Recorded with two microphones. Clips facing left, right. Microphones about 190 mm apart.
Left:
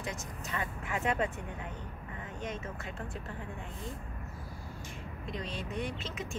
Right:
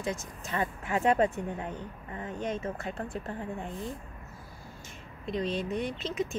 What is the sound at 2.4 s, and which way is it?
Speech, 30° right (ahead or behind).